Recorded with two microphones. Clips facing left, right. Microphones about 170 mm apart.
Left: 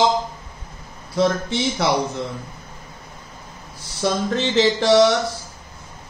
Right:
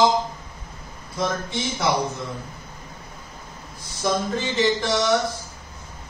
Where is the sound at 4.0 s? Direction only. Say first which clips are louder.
Left 3 dB; 85° left.